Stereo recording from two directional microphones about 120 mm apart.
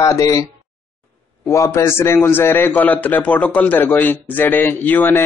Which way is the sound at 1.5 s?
25° left (ahead or behind).